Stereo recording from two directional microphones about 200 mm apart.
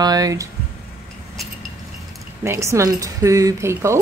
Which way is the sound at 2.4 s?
15° right (ahead or behind).